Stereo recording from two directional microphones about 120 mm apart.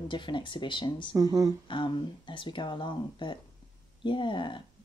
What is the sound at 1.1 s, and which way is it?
Speech, 30° right (ahead or behind).